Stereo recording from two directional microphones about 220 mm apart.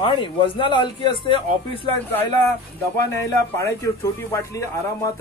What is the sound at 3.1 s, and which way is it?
A man's voice, 10° left (ahead or behind).